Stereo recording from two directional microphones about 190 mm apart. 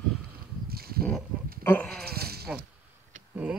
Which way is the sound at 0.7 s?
55° right (ahead or behind).